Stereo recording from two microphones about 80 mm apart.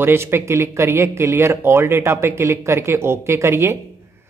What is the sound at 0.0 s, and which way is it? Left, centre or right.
Speech, right.